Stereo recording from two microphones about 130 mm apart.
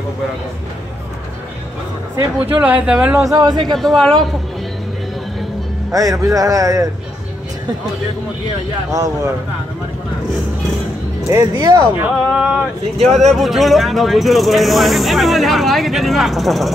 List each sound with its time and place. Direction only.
2.4 s speech: 10° right (ahead or behind)
3.2 s speech: 30° right (ahead or behind)
3.7 s speech: centre (ahead or behind)
5.9 s speech: 25° right (ahead or behind)
8.9 s speech: 25° right (ahead or behind)
11.2 s speech: 25° right (ahead or behind)
12.3 s speech: 5° right (ahead or behind)